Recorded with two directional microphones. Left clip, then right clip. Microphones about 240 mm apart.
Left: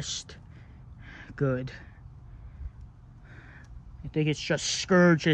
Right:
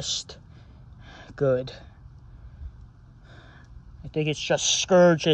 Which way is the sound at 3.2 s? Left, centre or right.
Centre.